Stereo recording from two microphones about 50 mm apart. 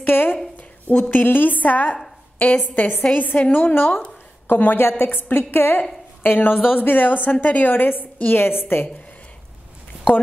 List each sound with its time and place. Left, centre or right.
0.0 s speech: left
0.6 s a sound: left
1.1 s a woman's voice: left
3.5 s a woman's voice: left